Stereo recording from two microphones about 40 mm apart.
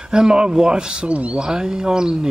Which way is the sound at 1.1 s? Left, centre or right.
Right.